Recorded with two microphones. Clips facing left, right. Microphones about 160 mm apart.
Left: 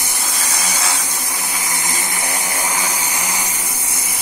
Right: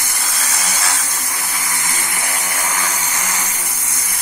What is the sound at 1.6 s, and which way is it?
Vehicle, 15° left (ahead or behind).